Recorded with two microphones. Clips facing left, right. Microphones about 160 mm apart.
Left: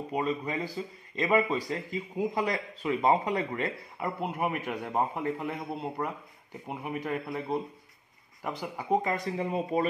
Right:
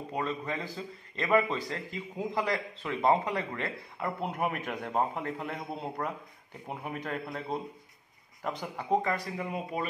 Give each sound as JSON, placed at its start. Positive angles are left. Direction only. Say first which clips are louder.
{"t": 0.1, "sound": "a man's voice", "louder": "left 3 dB", "side_deg": 15}
{"t": 9.0, "sound": "speech", "louder": "left 1 dB", "side_deg": 20}
{"t": 9.4, "sound": "speech", "louder": "left 5 dB", "side_deg": 35}